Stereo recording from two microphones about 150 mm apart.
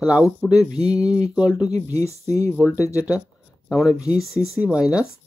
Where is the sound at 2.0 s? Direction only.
20° left (ahead or behind).